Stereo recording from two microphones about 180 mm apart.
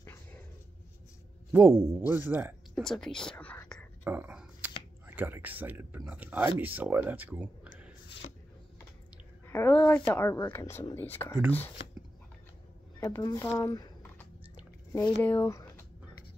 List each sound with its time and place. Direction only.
1.5 s speech: 15° right (ahead or behind)
2.7 s speech: 5° left (ahead or behind)
4.0 s a sound: 10° right (ahead or behind)
5.0 s speech: 10° right (ahead or behind)
9.5 s speech: 10° left (ahead or behind)
13.0 s speech: 20° left (ahead or behind)
13.6 s a sound: 20° left (ahead or behind)
14.9 s speech: 20° left (ahead or behind)